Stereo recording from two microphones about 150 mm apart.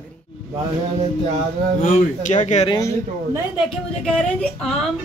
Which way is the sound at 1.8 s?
55° left (ahead or behind).